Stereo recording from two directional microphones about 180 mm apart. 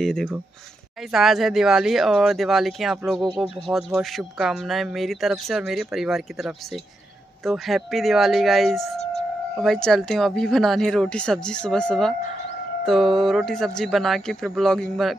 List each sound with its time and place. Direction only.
0.0 s speech: centre (ahead or behind)